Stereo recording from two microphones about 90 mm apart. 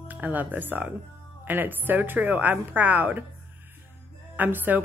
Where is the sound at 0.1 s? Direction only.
20° right (ahead or behind).